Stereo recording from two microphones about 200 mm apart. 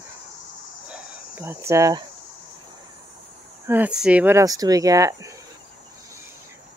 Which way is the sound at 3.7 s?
5° right (ahead or behind).